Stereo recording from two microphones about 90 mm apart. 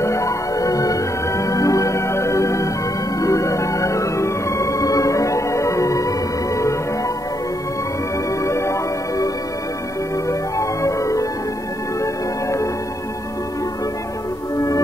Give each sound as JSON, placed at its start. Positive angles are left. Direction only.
{"t": 0.0, "sound": "music", "side_deg": 35}
{"t": 8.5, "sound": "music", "side_deg": 30}
{"t": 10.6, "sound": "music", "side_deg": 35}